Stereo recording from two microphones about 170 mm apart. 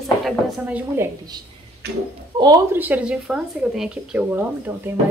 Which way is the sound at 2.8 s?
10° right (ahead or behind).